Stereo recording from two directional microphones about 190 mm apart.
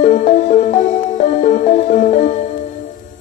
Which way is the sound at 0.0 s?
40° left (ahead or behind).